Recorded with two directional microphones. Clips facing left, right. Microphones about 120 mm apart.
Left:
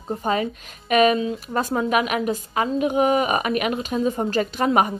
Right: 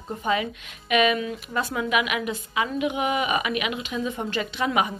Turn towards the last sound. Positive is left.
turn(degrees=45)  # may be behind; listen again after turning